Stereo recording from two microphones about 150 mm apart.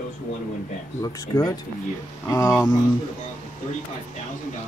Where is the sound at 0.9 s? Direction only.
25° left (ahead or behind).